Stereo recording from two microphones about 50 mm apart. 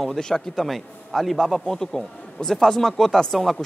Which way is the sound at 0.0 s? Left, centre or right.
Centre.